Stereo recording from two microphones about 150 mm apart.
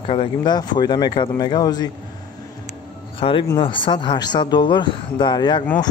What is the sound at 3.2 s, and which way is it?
Speech, 35° left (ahead or behind).